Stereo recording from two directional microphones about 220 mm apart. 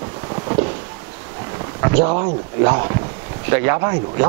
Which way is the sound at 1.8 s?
15° right (ahead or behind).